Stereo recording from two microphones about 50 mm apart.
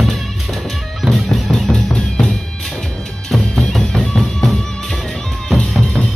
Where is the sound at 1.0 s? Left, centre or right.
Centre.